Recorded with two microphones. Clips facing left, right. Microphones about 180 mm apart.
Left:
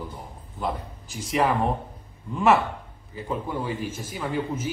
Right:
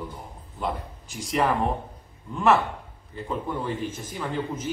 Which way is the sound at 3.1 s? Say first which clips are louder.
Left 1 dB; 5° left (ahead or behind).